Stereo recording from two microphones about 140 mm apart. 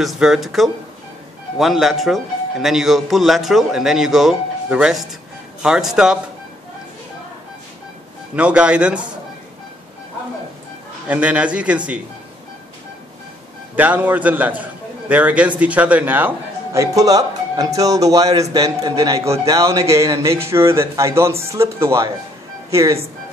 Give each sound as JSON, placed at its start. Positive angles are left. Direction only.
{"t": 0.0, "sound": "a man's voice", "side_deg": 0}
{"t": 8.4, "sound": "a man's voice", "side_deg": -10}
{"t": 11.1, "sound": "a man's voice", "side_deg": -10}
{"t": 13.7, "sound": "a man's voice", "side_deg": -10}